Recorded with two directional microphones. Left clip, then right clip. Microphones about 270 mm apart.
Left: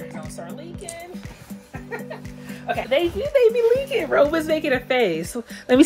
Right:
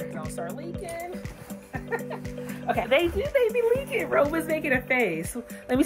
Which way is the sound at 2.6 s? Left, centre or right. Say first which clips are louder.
Left 2 dB; centre.